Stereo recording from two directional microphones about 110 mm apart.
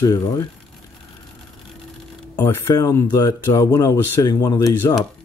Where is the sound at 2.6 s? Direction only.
30° left (ahead or behind).